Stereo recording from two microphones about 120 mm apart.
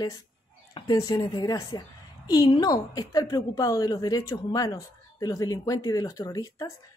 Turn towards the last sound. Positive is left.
turn(degrees=30)  # may be behind; listen again after turning